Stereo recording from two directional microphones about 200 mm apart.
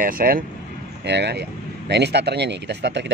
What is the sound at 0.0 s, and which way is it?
Speech, 45° right (ahead or behind).